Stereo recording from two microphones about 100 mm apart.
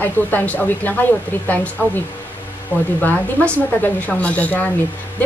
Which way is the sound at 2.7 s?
20° right (ahead or behind).